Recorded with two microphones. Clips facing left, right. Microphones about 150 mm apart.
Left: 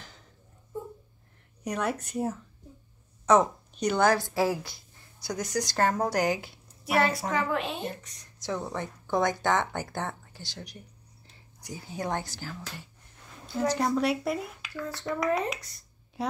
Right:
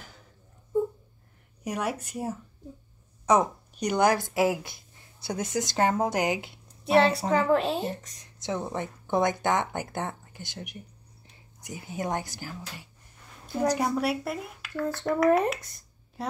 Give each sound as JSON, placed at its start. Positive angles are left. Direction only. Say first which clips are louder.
{"t": 1.6, "sound": "a woman's voice", "louder": "even", "side_deg": -10}
{"t": 8.4, "sound": "speech", "louder": "right 2 dB", "side_deg": -20}
{"t": 11.7, "sound": "a woman's voice", "louder": "right 1 dB", "side_deg": -20}
{"t": 15.2, "sound": "speech", "louder": "right 6 dB", "side_deg": -55}
{"t": 16.2, "sound": "a woman's voice", "louder": "left 2 dB", "side_deg": 0}